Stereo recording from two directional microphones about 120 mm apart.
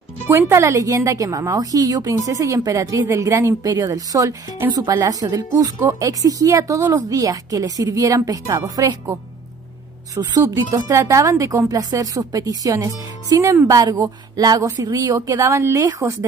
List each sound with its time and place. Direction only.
0.3 s a woman's voice: 20° right (ahead or behind)